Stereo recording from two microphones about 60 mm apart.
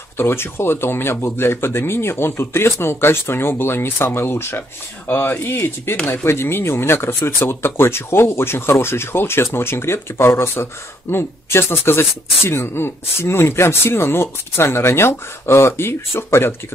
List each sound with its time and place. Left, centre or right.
0.2 s speech: left